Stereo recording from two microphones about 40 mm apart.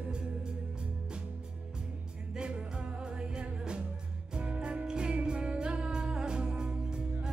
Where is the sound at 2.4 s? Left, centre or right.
Right.